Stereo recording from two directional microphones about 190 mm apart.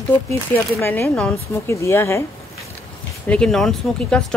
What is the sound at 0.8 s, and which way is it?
Speech, 10° left (ahead or behind).